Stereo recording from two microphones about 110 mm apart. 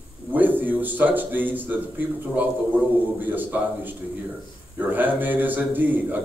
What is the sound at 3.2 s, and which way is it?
A man's voice, 15° right (ahead or behind).